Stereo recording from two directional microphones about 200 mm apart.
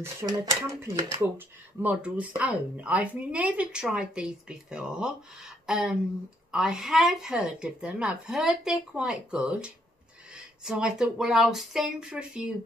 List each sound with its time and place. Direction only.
0.0 s a woman's voice: 15° right (ahead or behind)